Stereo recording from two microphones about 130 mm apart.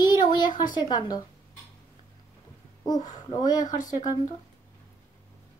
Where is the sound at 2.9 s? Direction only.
30° left (ahead or behind).